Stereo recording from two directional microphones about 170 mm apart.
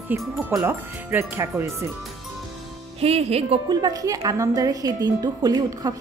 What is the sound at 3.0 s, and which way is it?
Speech, 35° right (ahead or behind).